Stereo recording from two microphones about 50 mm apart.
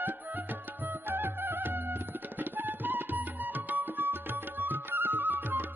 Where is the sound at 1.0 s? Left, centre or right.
Right.